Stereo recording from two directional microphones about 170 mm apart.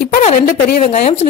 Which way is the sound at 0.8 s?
35° left (ahead or behind).